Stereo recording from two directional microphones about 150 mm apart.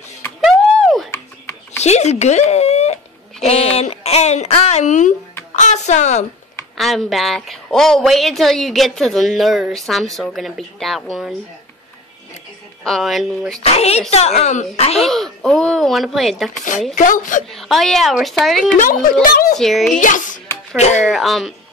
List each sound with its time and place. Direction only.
0.4 s a sound: centre (ahead or behind)
1.8 s a woman's voice: 50° left (ahead or behind)
6.8 s a woman's voice: centre (ahead or behind)
12.8 s a woman's voice: centre (ahead or behind)
13.6 s a woman's voice: 45° left (ahead or behind)
15.0 s a woman's voice: centre (ahead or behind)
16.9 s a woman's voice: 60° left (ahead or behind)
17.5 s a woman's voice: centre (ahead or behind)
19.6 s a woman's voice: centre (ahead or behind)
20.0 s a woman's voice: 60° left (ahead or behind)
20.7 s a woman's voice: 50° left (ahead or behind)
21.0 s a woman's voice: centre (ahead or behind)